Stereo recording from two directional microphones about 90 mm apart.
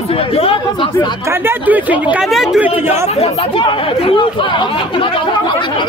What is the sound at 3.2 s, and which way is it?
Speech, 80° left.